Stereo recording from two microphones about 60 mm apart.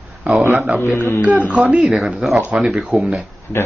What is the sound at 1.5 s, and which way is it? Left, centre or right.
Speech, centre.